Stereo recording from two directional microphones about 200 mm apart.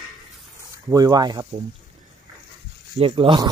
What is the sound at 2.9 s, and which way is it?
Speech, 25° right (ahead or behind).